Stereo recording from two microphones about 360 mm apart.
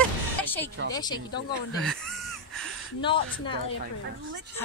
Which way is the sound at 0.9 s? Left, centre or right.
Centre.